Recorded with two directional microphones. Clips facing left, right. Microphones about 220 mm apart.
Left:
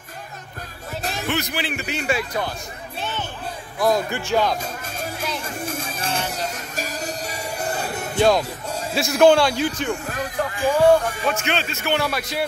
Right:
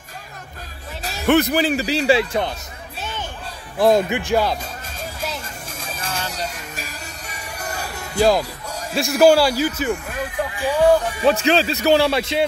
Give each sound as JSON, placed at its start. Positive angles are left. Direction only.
{"t": 1.2, "sound": "speech", "side_deg": -55}
{"t": 1.6, "sound": "a man's voice", "side_deg": -35}
{"t": 3.7, "sound": "speech", "side_deg": -25}
{"t": 4.3, "sound": "speech", "side_deg": -10}
{"t": 6.1, "sound": "a sound", "side_deg": 55}
{"t": 6.7, "sound": "music", "side_deg": 40}
{"t": 8.1, "sound": "a man's voice", "side_deg": 0}
{"t": 10.6, "sound": "music", "side_deg": 50}
{"t": 11.2, "sound": "a man's voice", "side_deg": -35}